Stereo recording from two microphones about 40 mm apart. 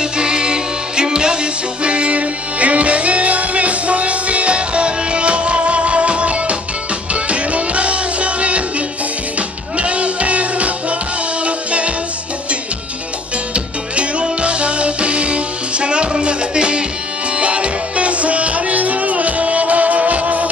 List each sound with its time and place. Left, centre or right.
0.0 s music: right
13.9 s music: right